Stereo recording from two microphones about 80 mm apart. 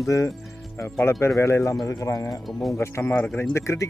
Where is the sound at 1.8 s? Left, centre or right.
Left.